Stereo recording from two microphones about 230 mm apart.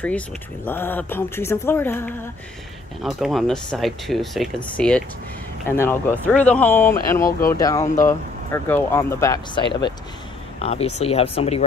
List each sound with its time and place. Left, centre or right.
0.7 s speech: centre
3.0 s speech: centre; by 11.6 s left